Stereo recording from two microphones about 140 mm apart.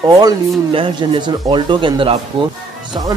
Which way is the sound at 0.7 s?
40° right (ahead or behind).